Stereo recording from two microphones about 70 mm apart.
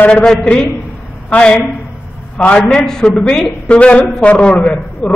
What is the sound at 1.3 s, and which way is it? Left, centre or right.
A man's voice, centre.